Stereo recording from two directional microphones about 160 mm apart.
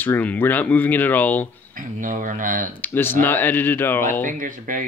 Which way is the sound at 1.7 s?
60° right (ahead or behind).